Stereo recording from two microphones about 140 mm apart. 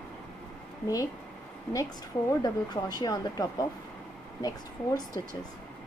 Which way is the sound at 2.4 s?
30° left (ahead or behind).